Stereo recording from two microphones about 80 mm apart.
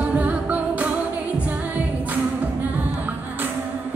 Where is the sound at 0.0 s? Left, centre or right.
Centre.